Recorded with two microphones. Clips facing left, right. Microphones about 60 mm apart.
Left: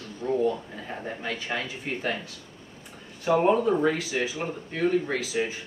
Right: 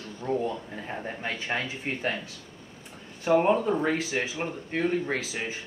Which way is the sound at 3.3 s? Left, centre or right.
Right.